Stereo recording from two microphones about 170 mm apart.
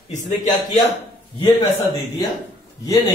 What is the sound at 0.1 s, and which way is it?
Speech, 45° left (ahead or behind).